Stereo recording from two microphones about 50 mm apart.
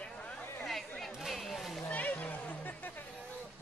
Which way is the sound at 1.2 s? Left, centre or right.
Centre.